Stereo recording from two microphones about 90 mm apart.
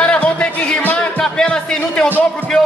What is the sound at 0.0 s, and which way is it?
Music, 15° left (ahead or behind).